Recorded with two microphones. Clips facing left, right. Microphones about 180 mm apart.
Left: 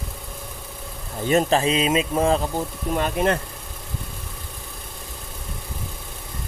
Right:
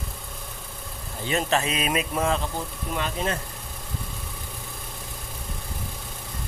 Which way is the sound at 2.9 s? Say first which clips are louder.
Left 7 dB; 55° left (ahead or behind).